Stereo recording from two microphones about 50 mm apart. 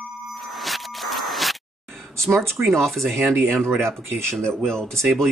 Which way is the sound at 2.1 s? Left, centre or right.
Right.